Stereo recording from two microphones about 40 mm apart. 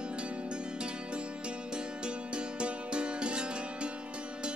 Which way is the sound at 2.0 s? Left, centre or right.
Right.